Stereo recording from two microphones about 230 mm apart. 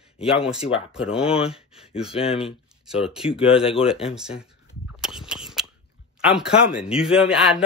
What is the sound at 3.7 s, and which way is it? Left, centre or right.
Speech, left.